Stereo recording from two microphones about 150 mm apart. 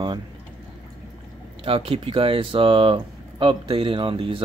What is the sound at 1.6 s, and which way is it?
Speech, 40° right (ahead or behind).